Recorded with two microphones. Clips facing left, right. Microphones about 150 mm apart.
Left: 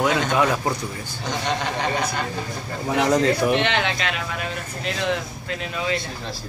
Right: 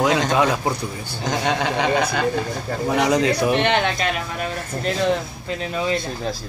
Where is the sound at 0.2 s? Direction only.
35° right (ahead or behind).